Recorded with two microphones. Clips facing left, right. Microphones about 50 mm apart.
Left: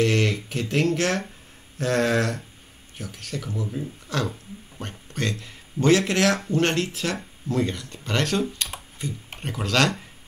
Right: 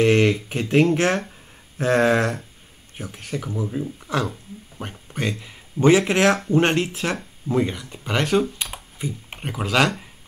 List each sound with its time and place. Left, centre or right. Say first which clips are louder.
0.0 s speech: right 5 dB; right